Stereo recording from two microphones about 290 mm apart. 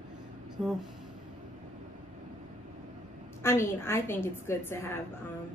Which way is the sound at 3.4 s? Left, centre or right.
Centre.